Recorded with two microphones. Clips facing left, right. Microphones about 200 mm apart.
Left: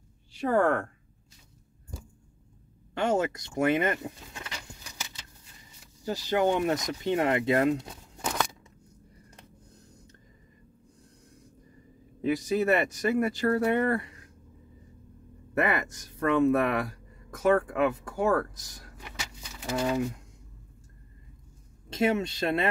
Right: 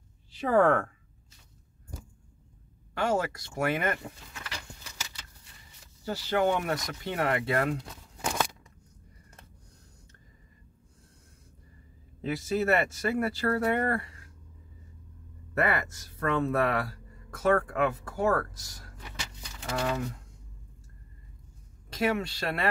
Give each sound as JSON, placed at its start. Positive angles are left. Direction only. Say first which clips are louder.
{"t": 0.3, "sound": "speech", "louder": "right 1 dB", "side_deg": 0}
{"t": 2.9, "sound": "speech", "louder": "left 2 dB", "side_deg": 20}
{"t": 6.0, "sound": "speech", "louder": "left 1 dB", "side_deg": 15}
{"t": 12.2, "sound": "speech", "louder": "left 3 dB", "side_deg": 15}
{"t": 15.5, "sound": "speech", "louder": "left 1 dB", "side_deg": 15}
{"t": 21.8, "sound": "speech", "louder": "left 3 dB", "side_deg": 25}